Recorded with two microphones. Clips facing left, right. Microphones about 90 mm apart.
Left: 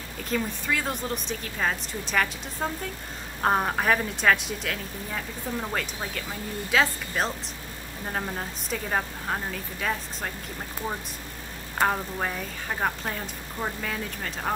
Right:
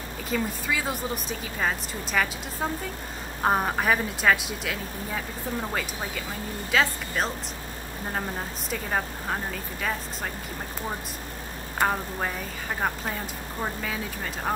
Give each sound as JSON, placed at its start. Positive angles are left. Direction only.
{"t": 0.3, "sound": "speech", "side_deg": -5}
{"t": 11.8, "sound": "speech", "side_deg": 0}
{"t": 13.6, "sound": "speech", "side_deg": 0}